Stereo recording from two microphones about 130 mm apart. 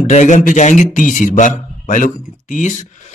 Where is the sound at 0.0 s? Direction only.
70° left (ahead or behind); by 2.7 s 85° left.